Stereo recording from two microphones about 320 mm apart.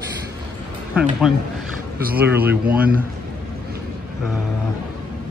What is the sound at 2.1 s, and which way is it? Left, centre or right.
Speech, centre.